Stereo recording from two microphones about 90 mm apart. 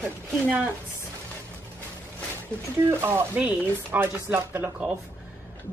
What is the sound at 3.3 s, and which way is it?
Speech, 15° right (ahead or behind).